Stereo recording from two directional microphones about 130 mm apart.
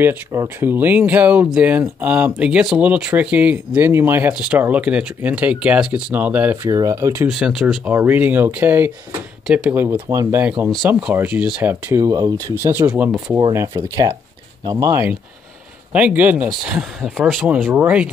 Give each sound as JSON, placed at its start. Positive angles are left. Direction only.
{"t": 0.0, "sound": "speech", "side_deg": -15}
{"t": 6.7, "sound": "speech", "side_deg": -25}
{"t": 7.2, "sound": "speech", "side_deg": -5}
{"t": 10.9, "sound": "speech", "side_deg": -10}
{"t": 11.9, "sound": "speech", "side_deg": -25}
{"t": 14.9, "sound": "speech", "side_deg": -15}